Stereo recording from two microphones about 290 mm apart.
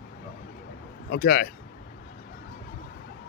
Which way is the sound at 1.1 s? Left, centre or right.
Left.